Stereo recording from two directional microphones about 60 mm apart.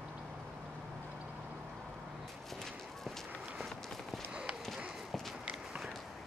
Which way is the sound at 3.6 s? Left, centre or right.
Centre.